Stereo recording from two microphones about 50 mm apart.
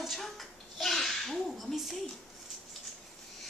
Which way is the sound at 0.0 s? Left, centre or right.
Centre.